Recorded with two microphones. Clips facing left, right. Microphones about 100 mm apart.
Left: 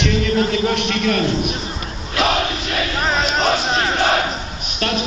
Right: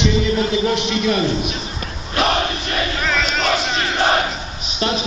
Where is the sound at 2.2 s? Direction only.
5° left (ahead or behind).